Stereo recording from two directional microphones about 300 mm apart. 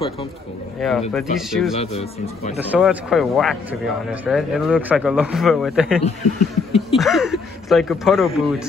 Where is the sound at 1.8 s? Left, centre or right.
Left.